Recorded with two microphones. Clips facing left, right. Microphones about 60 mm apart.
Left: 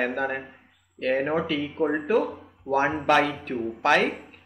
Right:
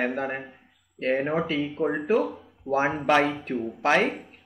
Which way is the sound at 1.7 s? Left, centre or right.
Centre.